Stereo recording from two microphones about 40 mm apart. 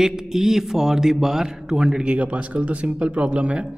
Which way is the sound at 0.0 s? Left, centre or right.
Centre.